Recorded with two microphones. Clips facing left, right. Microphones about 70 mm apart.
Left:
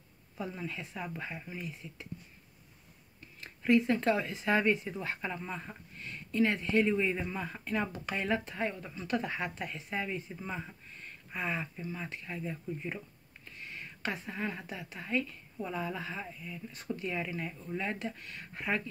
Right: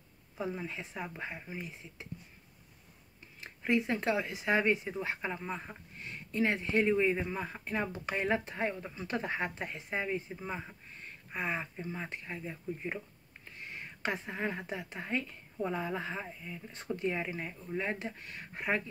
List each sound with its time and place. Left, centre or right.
0.4 s speech: right
3.3 s speech: right
13.5 s a sound: right
14.7 s speech: right